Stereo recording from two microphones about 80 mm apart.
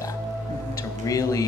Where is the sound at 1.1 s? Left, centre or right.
Left.